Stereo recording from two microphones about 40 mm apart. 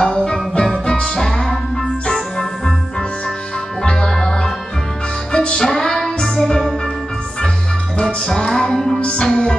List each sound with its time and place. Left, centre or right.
0.0 s music: centre
8.0 s music: centre